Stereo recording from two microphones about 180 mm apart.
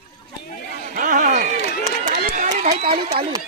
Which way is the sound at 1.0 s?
50° right (ahead or behind).